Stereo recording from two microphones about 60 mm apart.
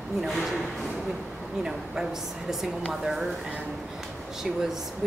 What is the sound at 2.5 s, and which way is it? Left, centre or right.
Speech, centre.